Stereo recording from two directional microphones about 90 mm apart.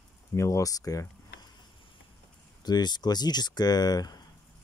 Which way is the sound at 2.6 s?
50° left (ahead or behind).